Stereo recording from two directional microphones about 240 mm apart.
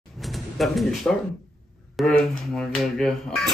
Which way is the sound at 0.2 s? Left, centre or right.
Centre.